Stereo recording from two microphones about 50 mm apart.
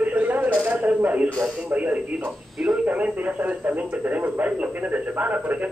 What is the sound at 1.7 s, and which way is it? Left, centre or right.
Speech, right.